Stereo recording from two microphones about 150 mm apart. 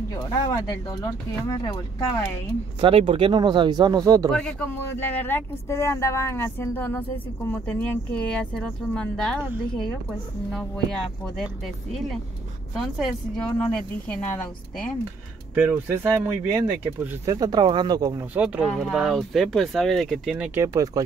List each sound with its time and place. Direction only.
0.1 s speech: 25° left (ahead or behind)
2.8 s speech: 35° right (ahead or behind)
4.3 s speech: 5° left (ahead or behind)
10.5 s speech: centre (ahead or behind)
15.5 s speech: 15° right (ahead or behind)
17.3 s speech: 25° right (ahead or behind)
18.3 s speech: 5° right (ahead or behind)
20.6 s speech: 20° right (ahead or behind)